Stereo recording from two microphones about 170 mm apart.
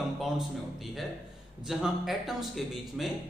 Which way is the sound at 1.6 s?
Centre (ahead or behind).